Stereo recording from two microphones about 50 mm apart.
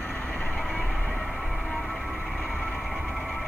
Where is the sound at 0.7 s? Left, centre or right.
Centre.